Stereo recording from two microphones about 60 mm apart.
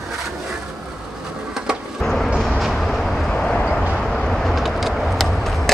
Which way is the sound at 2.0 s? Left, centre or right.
Centre.